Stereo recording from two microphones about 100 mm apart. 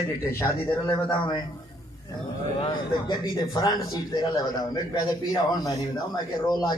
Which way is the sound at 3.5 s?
45° left (ahead or behind).